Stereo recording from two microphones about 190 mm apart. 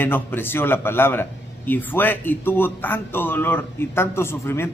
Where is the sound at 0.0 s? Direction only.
10° left (ahead or behind).